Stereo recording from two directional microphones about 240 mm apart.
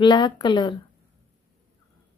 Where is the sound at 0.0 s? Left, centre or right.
Centre.